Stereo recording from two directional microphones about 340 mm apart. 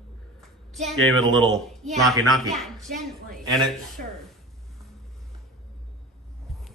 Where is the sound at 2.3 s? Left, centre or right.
Centre.